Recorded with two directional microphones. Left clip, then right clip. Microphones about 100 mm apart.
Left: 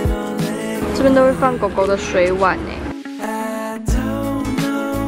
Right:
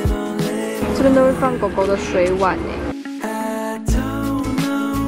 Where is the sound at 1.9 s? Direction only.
15° left (ahead or behind).